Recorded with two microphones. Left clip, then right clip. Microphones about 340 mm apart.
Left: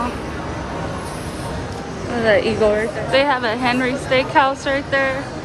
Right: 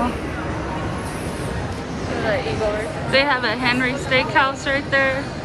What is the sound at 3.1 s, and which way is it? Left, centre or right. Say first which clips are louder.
A woman's voice: left 1 dB; centre.